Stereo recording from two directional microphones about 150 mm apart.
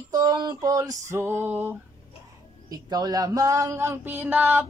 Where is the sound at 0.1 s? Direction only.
25° right (ahead or behind); by 1.8 s 10° right (ahead or behind).